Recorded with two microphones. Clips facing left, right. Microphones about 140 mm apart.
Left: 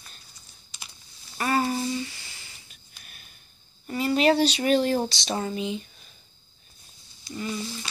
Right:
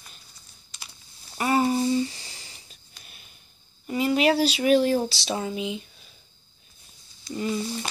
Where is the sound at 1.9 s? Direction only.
35° right (ahead or behind).